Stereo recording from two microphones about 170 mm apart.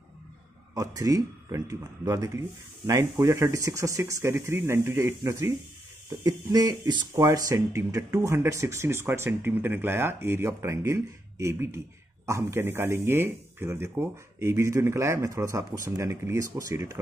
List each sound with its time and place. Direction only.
0.7 s speech: 20° right (ahead or behind)